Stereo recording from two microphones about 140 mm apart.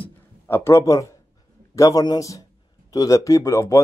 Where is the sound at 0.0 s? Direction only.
20° left (ahead or behind).